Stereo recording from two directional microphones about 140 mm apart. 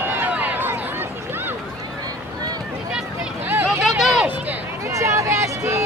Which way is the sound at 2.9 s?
10° right (ahead or behind).